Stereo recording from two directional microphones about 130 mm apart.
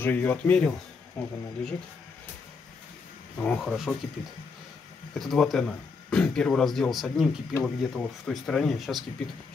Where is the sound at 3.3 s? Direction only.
10° left (ahead or behind).